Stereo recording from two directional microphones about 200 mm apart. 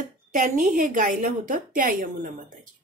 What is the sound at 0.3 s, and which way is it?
Speech, 40° right (ahead or behind).